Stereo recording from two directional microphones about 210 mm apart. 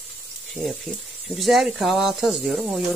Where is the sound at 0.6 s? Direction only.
5° left (ahead or behind).